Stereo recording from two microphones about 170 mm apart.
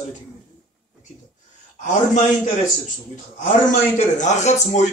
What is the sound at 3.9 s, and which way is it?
Speech, 45° left (ahead or behind).